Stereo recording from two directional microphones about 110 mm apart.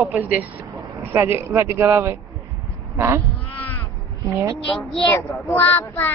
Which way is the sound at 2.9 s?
25° right (ahead or behind).